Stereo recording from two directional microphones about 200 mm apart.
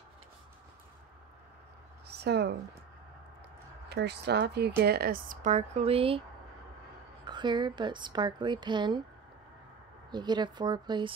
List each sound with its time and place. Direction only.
2.0 s a sound: 55° right (ahead or behind)
3.9 s speech: 55° right (ahead or behind); by 6.2 s 30° right (ahead or behind)
7.2 s a woman's voice: 20° right (ahead or behind)
10.1 s a woman's voice: 20° right (ahead or behind)